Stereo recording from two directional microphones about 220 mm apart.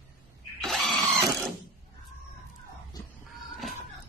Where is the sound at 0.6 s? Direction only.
5° left (ahead or behind).